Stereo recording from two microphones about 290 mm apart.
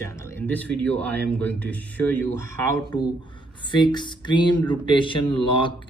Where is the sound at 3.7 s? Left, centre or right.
Centre.